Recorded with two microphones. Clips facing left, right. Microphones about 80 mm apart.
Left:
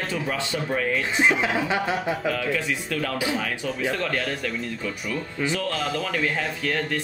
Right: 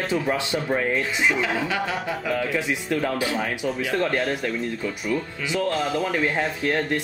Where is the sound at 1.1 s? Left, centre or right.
Left.